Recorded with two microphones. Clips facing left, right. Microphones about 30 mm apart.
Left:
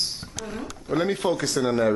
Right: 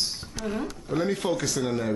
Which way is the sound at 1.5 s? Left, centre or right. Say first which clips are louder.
Left 4 dB; left.